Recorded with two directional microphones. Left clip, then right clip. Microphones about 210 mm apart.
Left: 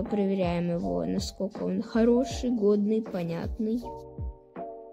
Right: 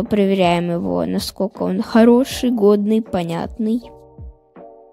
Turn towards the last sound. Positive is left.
turn(degrees=-50)  # may be behind; listen again after turning